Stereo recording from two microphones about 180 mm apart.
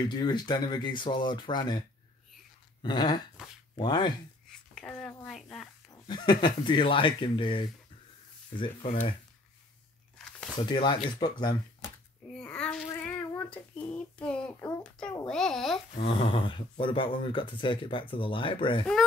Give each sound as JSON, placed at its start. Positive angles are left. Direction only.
{"t": 0.0, "sound": "speech", "side_deg": 25}
{"t": 2.8, "sound": "speech", "side_deg": 25}
{"t": 3.4, "sound": "a child's voice", "side_deg": -5}
{"t": 3.7, "sound": "speech", "side_deg": 25}
{"t": 4.5, "sound": "a sound", "side_deg": 5}
{"t": 6.0, "sound": "speech", "side_deg": 25}
{"t": 10.6, "sound": "speech", "side_deg": 25}
{"t": 12.4, "sound": "babbling", "side_deg": 5}
{"t": 13.3, "sound": "a child's voice", "side_deg": 5}
{"t": 16.0, "sound": "speech", "side_deg": 30}